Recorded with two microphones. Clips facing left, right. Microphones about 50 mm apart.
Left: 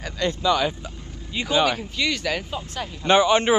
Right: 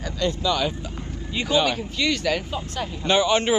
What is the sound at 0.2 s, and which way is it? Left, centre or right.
Speech, centre.